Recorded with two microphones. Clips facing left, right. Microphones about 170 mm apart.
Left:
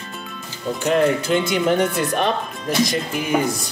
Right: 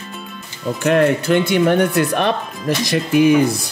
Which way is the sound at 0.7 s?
65° right (ahead or behind).